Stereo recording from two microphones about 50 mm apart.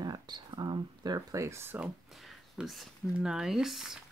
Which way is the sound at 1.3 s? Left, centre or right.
Right.